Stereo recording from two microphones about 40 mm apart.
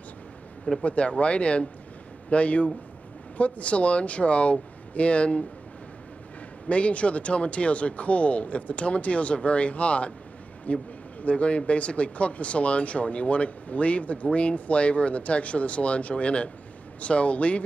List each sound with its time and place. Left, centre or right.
0.8 s speech: left
6.7 s speech: left